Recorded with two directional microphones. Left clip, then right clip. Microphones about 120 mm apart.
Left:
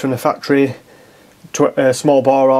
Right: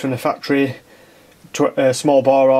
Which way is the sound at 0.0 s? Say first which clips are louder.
Left 3 dB; 15° left (ahead or behind).